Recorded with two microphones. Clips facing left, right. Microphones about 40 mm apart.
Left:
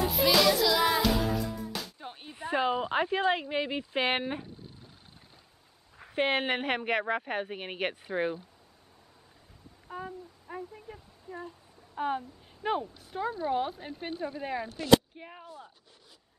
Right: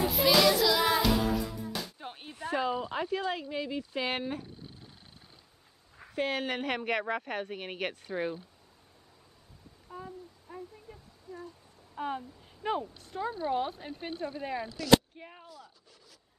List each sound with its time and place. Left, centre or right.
0.0 s music: centre
2.3 s speech: left
6.1 s a woman's voice: left
9.8 s a sound: left
11.9 s a woman's voice: centre